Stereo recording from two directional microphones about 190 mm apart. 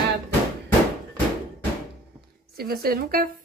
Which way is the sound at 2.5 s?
55° right (ahead or behind).